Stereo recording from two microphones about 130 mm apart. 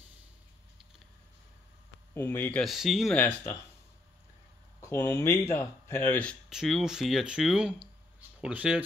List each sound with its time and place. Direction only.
2.1 s speech: 20° left (ahead or behind)
2.6 s speech: centre (ahead or behind)
3.2 s speech: 15° left (ahead or behind)
4.7 s speech: 20° left (ahead or behind)
6.5 s speech: 5° right (ahead or behind)